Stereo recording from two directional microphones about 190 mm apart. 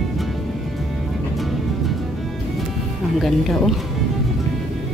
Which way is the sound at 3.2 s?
Centre (ahead or behind).